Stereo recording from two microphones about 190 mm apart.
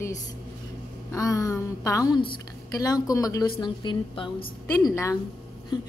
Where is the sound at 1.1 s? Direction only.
15° left (ahead or behind).